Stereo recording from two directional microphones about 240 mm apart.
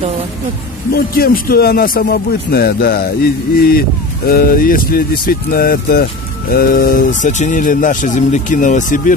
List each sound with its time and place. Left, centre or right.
0.9 s speech: left